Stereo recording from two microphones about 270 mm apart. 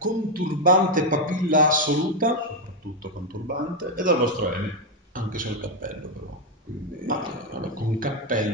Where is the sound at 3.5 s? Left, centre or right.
Right.